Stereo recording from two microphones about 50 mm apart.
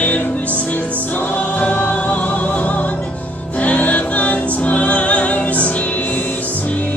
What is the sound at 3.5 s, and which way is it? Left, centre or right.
Music, left.